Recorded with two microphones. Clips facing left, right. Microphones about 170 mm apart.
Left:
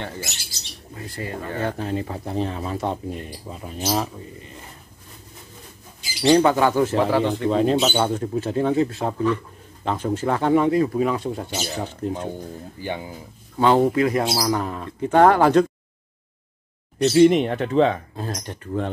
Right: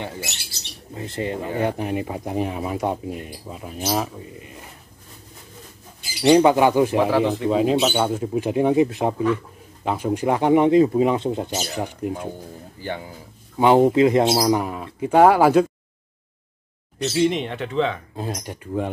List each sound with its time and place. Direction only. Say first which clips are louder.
0.9 s speech: right 5 dB; 25° right (ahead or behind); by 4.5 s 5° right (ahead or behind)
6.2 s speech: right 2 dB; 15° right (ahead or behind)
7.1 s speech: right 1 dB; centre (ahead or behind)
12.8 s speech: left 1 dB; 15° left (ahead or behind)
13.6 s speech: right 3 dB; 15° right (ahead or behind)
17.0 s speech: left 6 dB; 50° left (ahead or behind)
18.1 s speech: right 1 dB; 10° right (ahead or behind)